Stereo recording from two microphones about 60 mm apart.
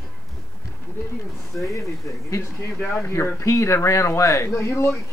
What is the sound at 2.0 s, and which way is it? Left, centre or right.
Speech, left.